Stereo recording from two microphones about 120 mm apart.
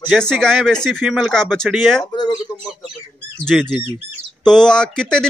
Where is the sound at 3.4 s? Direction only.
5° left (ahead or behind).